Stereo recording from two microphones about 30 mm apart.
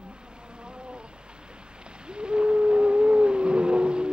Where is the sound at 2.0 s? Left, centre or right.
Right.